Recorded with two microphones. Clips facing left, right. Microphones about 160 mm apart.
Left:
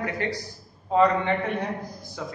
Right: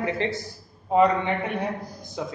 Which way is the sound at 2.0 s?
20° right (ahead or behind).